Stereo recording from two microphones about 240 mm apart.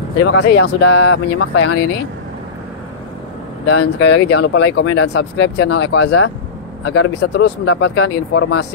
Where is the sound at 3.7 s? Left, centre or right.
Left.